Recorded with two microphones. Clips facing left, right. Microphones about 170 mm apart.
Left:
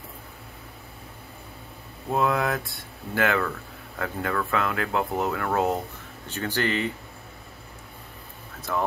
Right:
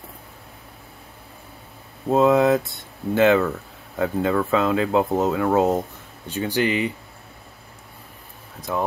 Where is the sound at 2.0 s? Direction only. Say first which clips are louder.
Right 8 dB; 25° right (ahead or behind).